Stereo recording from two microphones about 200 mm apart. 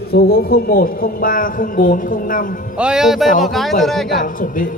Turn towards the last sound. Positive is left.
turn(degrees=45)  # may be behind; listen again after turning